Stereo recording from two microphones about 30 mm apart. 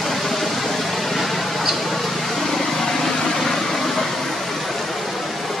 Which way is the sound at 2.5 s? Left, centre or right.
Centre.